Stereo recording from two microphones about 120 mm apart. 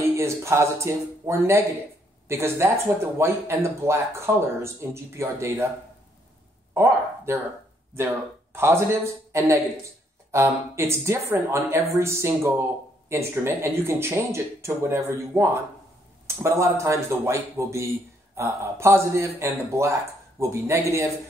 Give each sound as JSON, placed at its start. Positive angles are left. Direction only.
{"t": 0.0, "sound": "speech", "side_deg": -20}
{"t": 6.7, "sound": "speech", "side_deg": -20}
{"t": 8.5, "sound": "speech", "side_deg": -20}